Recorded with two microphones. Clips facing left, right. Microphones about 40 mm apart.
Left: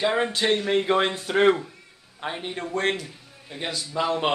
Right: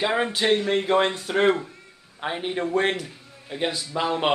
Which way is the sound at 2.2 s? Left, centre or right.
Centre.